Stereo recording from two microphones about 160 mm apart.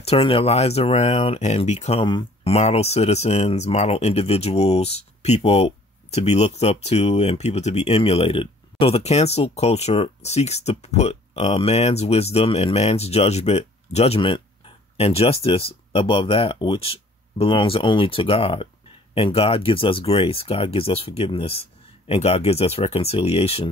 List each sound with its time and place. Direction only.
0.0 s speech: 35° left (ahead or behind)